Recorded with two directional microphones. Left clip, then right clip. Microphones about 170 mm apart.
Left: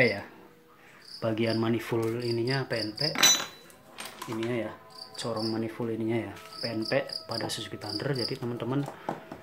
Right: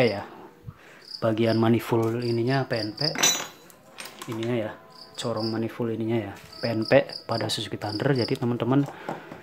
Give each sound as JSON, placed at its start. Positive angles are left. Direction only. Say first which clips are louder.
{"t": 0.0, "sound": "cricket", "louder": "right 2 dB", "side_deg": -15}
{"t": 4.4, "sound": "cricket", "louder": "right 4 dB", "side_deg": -20}
{"t": 6.7, "sound": "cricket", "louder": "right 9 dB", "side_deg": -25}